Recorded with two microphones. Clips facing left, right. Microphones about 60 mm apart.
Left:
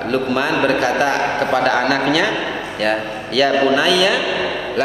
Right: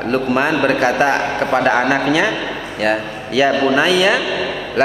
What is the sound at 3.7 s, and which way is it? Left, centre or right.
Speech, right.